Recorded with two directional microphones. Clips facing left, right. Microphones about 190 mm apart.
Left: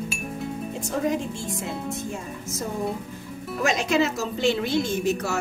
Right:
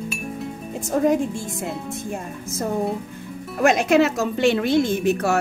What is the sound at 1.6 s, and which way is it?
Speech, centre (ahead or behind).